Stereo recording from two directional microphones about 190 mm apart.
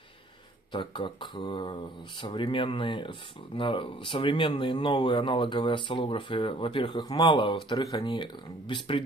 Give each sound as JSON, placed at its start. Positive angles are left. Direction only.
{"t": 0.7, "sound": "speech", "side_deg": 25}